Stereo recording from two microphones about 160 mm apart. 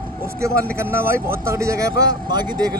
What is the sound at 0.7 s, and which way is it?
A man's voice, 15° right (ahead or behind).